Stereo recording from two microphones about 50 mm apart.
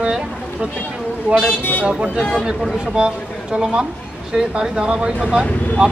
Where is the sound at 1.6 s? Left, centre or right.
Left.